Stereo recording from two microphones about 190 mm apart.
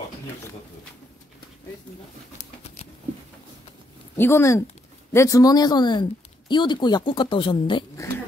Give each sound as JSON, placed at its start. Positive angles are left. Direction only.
{"t": 2.6, "sound": "patter", "side_deg": 35}
{"t": 4.2, "sound": "speech", "side_deg": 15}